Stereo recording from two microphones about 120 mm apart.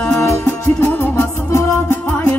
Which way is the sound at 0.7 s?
10° left (ahead or behind).